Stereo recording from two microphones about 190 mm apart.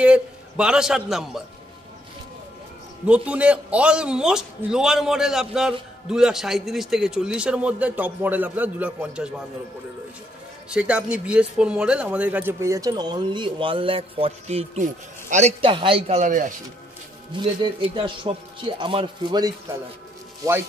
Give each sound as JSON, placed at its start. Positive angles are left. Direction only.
{"t": 0.0, "sound": "a man's voice", "side_deg": -5}
{"t": 3.1, "sound": "a man's voice", "side_deg": -5}
{"t": 10.7, "sound": "speech", "side_deg": -5}
{"t": 17.4, "sound": "speech", "side_deg": -25}